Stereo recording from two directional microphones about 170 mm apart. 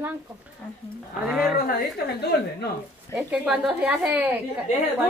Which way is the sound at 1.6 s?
60° left (ahead or behind).